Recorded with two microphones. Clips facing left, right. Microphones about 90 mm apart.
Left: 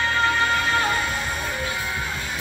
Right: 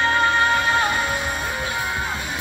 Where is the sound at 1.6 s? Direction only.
20° right (ahead or behind).